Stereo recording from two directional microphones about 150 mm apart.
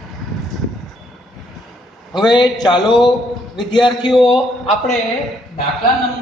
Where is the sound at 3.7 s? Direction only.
30° left (ahead or behind).